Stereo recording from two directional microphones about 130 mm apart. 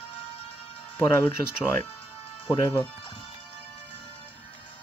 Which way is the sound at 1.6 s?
15° left (ahead or behind).